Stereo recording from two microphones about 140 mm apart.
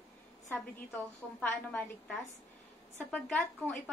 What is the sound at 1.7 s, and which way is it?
A woman's voice, 10° left (ahead or behind).